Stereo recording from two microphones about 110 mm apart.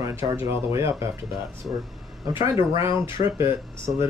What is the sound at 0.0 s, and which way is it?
Speech, 30° right (ahead or behind).